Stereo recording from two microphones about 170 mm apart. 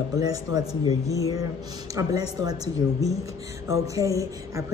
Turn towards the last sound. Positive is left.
turn(degrees=-20)  # may be behind; listen again after turning